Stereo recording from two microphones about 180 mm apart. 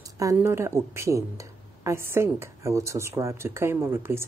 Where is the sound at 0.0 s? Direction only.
15° right (ahead or behind).